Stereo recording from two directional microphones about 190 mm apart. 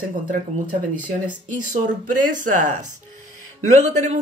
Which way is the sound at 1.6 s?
45° right (ahead or behind).